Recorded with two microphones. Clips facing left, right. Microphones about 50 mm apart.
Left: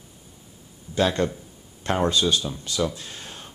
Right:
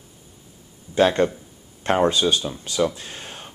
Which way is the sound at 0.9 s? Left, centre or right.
Centre.